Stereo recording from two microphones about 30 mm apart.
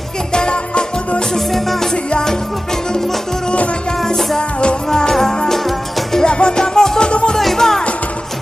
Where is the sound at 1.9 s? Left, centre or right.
Left.